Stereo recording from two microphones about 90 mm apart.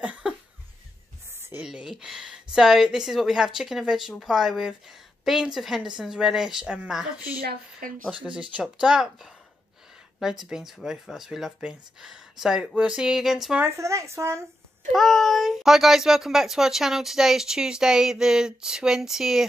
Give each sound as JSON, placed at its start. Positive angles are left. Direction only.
{"t": 0.0, "sound": "cough", "side_deg": -10}
{"t": 1.6, "sound": "speech", "side_deg": -10}
{"t": 8.4, "sound": "speech", "side_deg": -10}
{"t": 13.6, "sound": "speech", "side_deg": -30}
{"t": 14.9, "sound": "speech", "side_deg": 0}